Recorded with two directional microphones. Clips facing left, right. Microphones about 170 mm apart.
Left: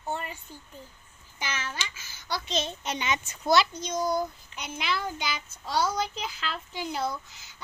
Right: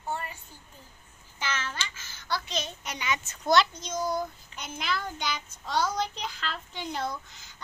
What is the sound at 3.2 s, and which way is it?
A child's voice, 5° left (ahead or behind).